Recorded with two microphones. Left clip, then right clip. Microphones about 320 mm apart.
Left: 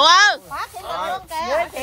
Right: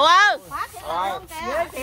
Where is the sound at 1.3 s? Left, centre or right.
Left.